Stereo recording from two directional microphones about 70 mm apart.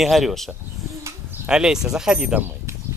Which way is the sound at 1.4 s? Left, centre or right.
Centre.